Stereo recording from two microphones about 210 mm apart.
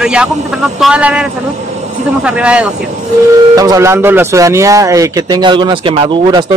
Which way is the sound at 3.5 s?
15° right (ahead or behind).